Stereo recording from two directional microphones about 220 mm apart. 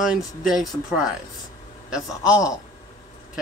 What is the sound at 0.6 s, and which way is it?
Speech, centre (ahead or behind).